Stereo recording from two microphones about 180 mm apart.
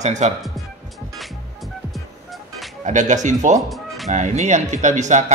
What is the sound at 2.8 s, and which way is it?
Music, 40° right (ahead or behind).